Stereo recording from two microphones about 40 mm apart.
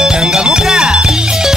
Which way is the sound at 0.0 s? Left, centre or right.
Centre.